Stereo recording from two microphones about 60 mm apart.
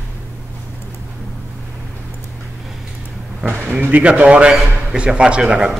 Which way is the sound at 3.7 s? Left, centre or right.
Right.